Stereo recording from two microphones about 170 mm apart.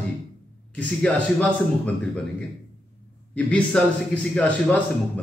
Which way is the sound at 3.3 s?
5° left (ahead or behind).